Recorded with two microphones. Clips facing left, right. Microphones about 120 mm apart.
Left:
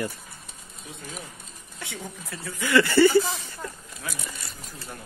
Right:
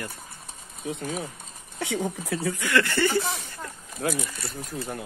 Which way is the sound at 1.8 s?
80° right.